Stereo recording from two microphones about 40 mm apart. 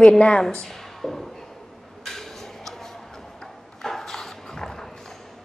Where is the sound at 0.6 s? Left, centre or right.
Centre.